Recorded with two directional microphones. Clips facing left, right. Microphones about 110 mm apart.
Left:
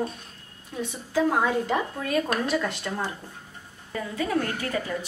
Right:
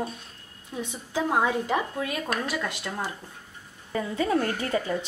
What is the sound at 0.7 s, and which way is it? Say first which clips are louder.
Speech: left 3 dB; 15° right (ahead or behind).